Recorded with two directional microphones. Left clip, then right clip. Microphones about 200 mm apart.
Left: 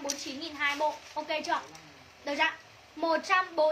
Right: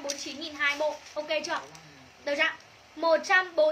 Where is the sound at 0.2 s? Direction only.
20° right (ahead or behind).